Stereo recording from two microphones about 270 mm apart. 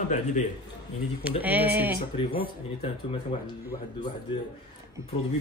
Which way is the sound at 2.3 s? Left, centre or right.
Left.